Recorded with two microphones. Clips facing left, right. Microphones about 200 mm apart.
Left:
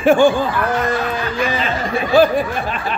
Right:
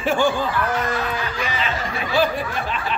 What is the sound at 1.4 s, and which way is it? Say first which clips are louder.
Speech: left 5 dB; 40° left (ahead or behind).